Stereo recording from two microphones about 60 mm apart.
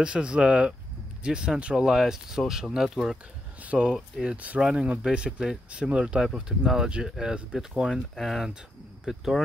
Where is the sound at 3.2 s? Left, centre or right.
Right.